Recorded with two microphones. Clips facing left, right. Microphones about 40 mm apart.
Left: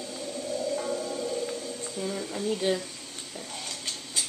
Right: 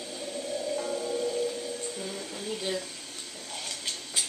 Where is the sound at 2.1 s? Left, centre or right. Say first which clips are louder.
Left 5 dB; centre.